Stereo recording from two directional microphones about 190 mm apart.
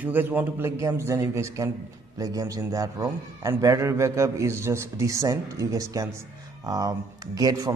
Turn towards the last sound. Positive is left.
turn(degrees=-20)  # may be behind; listen again after turning